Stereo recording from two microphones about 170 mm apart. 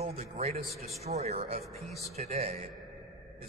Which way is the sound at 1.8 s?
Centre (ahead or behind).